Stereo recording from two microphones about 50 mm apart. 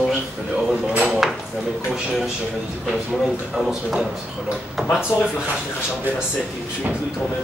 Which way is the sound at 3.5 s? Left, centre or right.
Centre.